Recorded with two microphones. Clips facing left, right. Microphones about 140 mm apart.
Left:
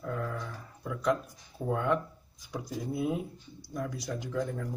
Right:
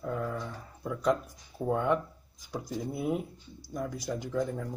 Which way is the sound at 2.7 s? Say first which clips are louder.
Left 1 dB; 5° left (ahead or behind).